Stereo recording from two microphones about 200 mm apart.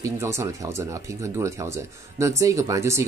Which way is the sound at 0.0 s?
15° right (ahead or behind).